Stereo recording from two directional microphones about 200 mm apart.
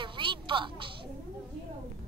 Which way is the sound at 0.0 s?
25° right (ahead or behind).